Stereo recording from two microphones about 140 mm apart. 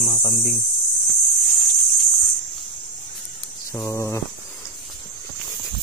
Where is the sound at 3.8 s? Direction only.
20° left (ahead or behind).